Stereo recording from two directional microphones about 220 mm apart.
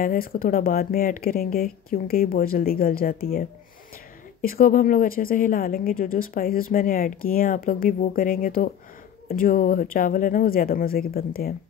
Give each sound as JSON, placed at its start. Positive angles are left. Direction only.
{"t": 0.0, "sound": "a woman's voice", "side_deg": 40}